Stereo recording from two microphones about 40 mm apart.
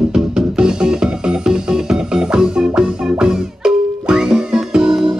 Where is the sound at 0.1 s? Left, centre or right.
Centre.